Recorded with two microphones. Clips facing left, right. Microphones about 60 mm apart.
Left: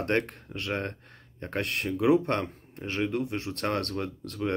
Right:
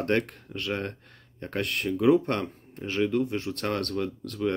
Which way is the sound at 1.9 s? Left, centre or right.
Centre.